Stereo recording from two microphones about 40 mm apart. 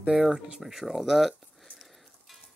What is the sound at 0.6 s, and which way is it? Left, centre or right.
Speech, centre.